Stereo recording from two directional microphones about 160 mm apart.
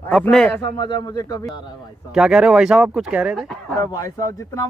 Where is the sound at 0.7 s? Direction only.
25° left (ahead or behind).